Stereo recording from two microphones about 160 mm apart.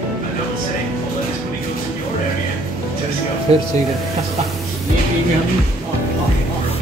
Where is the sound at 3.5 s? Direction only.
40° right (ahead or behind).